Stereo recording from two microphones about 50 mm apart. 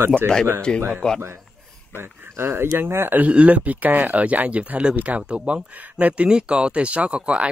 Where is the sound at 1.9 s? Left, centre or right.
Right.